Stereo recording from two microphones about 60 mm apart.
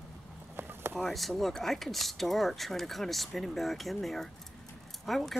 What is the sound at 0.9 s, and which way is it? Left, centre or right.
Speech, centre.